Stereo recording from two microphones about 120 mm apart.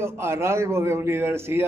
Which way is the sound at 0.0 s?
20° right (ahead or behind).